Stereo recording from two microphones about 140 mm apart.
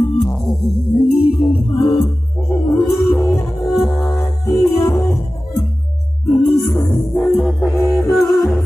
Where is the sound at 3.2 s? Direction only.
20° left (ahead or behind).